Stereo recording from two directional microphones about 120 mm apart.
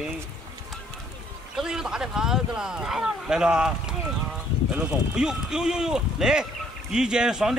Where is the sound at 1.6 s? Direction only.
5° right (ahead or behind).